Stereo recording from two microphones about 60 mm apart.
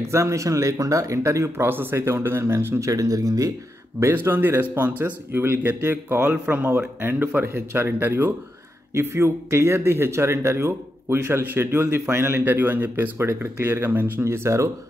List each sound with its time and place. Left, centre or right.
0.1 s speech: right
1.6 s speech: right
2.8 s speech: right
4.0 s speech: right
13.2 s speech: right
14.2 s speech: right